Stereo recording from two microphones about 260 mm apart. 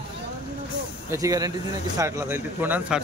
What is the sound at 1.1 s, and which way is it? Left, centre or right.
Speech, centre.